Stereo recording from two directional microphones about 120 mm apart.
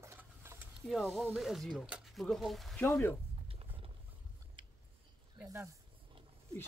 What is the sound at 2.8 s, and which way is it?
Speech, 20° left (ahead or behind).